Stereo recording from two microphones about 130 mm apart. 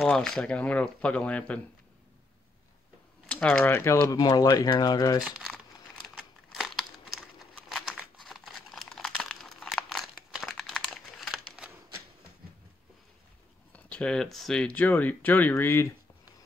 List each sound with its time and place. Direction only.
0.0 s speech: 5° left (ahead or behind)
3.3 s speech: 5° left (ahead or behind)
3.6 s speech: 20° left (ahead or behind)
5.2 s speech: 5° right (ahead or behind)
6.0 s crumpling: centre (ahead or behind)
13.7 s speech: 10° left (ahead or behind)